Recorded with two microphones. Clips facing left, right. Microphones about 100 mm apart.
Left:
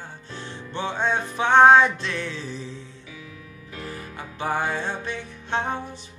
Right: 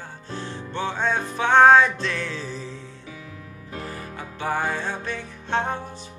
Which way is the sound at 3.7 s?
35° right (ahead or behind).